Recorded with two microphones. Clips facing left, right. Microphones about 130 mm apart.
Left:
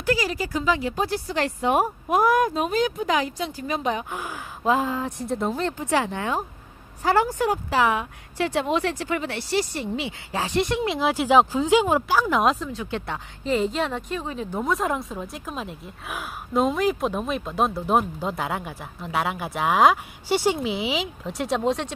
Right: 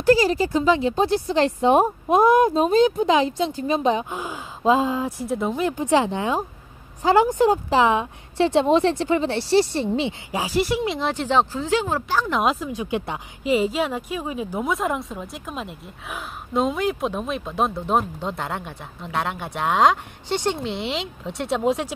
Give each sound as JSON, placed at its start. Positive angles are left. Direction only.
{"t": 0.0, "sound": "speech", "side_deg": -30}
{"t": 5.2, "sound": "speech", "side_deg": 0}
{"t": 5.7, "sound": "a woman's voice", "side_deg": -20}
{"t": 10.3, "sound": "speech", "side_deg": -5}
{"t": 12.6, "sound": "speech", "side_deg": -15}